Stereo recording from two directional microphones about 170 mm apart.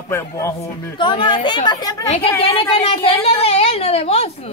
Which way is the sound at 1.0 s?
30° left (ahead or behind).